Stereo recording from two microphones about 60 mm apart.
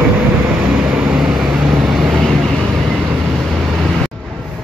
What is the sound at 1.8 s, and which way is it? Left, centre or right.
Vehicle, centre.